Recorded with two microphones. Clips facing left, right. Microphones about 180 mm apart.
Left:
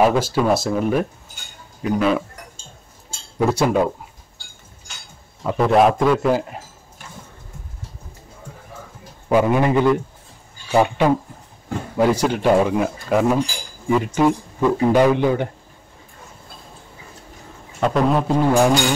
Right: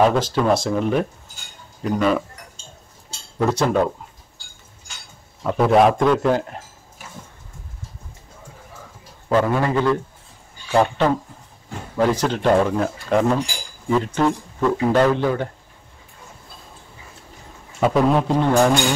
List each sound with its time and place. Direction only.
0.0 s a man's voice: 5° left (ahead or behind)
3.3 s speech: 10° left (ahead or behind)
5.4 s a man's voice: centre (ahead or behind)
9.3 s speech: 15° left (ahead or behind)
17.7 s a man's voice: 5° right (ahead or behind)